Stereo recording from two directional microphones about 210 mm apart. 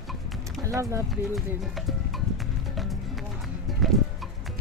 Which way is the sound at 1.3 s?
Centre (ahead or behind).